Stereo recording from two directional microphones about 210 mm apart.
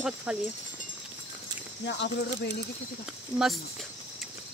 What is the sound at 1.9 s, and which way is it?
Speech, 55° left (ahead or behind).